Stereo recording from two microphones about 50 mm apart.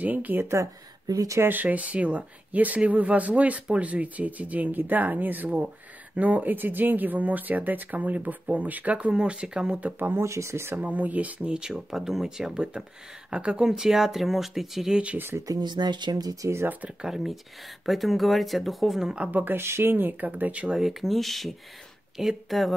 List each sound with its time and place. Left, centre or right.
0.0 s speech: right; by 9.8 s centre
9.9 s speech: right
10.2 s speech: right
10.8 s speech: right; by 15.0 s centre
16.3 s speech: right
17.0 s speech: centre
19.0 s speech: right
19.3 s speech: right
19.6 s speech: right
20.6 s speech: centre